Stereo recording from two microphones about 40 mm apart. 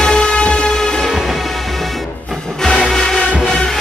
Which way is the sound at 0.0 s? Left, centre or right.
Centre.